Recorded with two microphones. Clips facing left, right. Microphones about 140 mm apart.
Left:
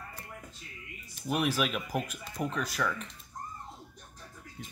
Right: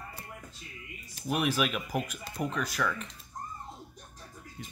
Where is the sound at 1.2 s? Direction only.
Centre (ahead or behind).